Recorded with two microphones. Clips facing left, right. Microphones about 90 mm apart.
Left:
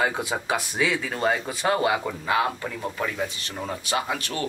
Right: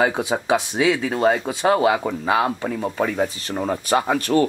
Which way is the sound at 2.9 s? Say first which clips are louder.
Right 8 dB; 40° right (ahead or behind).